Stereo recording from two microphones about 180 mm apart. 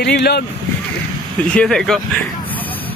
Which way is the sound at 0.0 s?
70° left (ahead or behind).